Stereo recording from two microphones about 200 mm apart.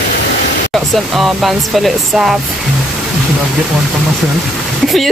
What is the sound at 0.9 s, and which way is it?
Speech, centre (ahead or behind).